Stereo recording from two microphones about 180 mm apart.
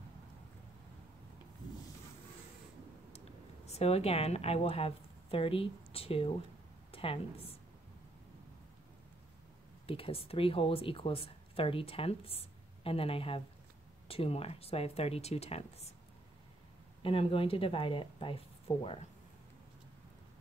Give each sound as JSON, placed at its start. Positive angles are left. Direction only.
{"t": 3.6, "sound": "a woman's voice", "side_deg": 35}
{"t": 9.8, "sound": "speech", "side_deg": 30}
{"t": 17.0, "sound": "speech", "side_deg": 30}